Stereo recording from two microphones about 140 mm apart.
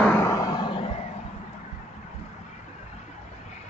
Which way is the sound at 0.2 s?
25° left (ahead or behind).